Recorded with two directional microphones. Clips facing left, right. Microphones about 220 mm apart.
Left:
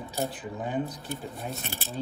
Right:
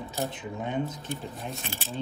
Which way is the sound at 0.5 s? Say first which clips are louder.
Even; centre (ahead or behind).